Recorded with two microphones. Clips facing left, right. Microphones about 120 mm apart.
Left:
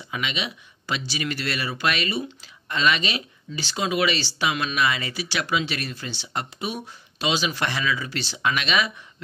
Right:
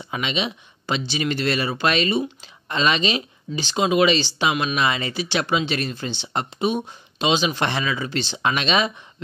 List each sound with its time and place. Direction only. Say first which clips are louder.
0.0 s speech: right 4 dB; 30° right (ahead or behind)